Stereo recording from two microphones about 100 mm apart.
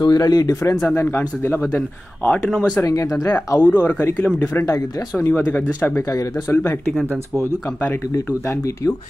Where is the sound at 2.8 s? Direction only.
35° left (ahead or behind).